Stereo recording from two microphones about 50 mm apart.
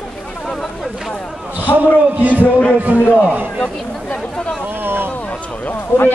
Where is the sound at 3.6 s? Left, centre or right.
Centre.